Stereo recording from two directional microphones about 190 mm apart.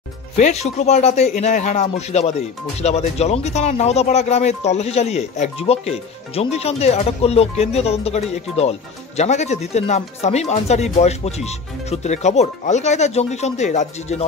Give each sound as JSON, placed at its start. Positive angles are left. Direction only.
{"t": 0.4, "sound": "speech", "side_deg": 35}